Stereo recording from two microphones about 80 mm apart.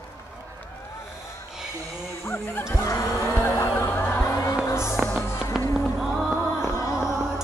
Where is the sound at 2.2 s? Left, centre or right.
Left.